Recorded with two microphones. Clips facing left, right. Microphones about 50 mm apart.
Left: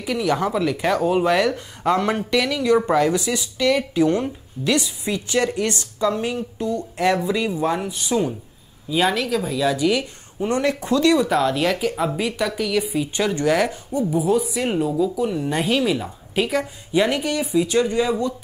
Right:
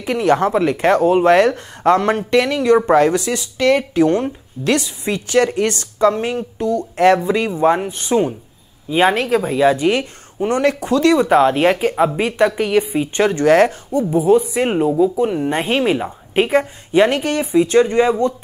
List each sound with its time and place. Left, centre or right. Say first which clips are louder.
0.0 s a woman's voice: right 6 dB; right
2.0 s a woman's voice: right 5 dB; right